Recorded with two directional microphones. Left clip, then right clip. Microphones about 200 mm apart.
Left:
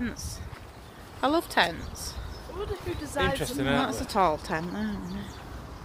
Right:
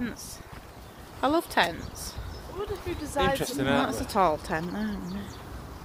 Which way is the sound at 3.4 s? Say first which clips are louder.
Right 1 dB; 30° right (ahead or behind).